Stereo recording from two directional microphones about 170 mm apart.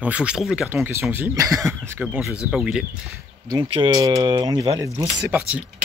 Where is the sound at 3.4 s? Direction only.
25° right (ahead or behind).